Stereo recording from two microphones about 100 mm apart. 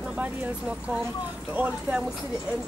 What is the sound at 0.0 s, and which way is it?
Speech, 10° right (ahead or behind).